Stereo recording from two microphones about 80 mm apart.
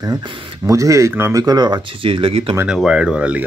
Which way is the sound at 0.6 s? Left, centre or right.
Right.